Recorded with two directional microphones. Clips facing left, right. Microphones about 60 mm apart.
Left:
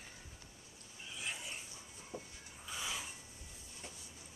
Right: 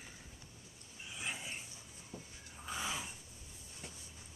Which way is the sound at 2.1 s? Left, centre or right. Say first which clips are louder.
Left 3 dB; centre.